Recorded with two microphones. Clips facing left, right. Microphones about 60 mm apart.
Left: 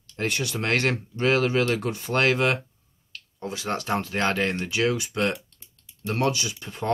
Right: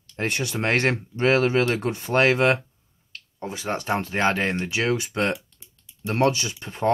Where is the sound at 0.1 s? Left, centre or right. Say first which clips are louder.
Right 1 dB; right.